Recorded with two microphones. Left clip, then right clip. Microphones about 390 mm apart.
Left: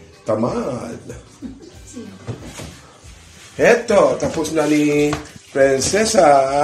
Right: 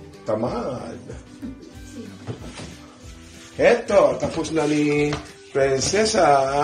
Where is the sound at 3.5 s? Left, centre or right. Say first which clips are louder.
Left 3 dB; right.